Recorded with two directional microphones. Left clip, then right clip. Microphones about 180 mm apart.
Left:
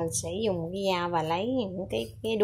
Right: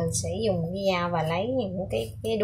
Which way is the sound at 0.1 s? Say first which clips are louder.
Right 2 dB; 55° left (ahead or behind).